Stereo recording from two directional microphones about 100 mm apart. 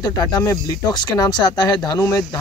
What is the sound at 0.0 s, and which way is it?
Speech, 40° left (ahead or behind).